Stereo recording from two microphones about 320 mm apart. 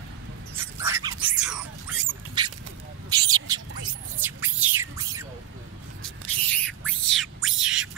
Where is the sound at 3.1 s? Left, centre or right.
Centre.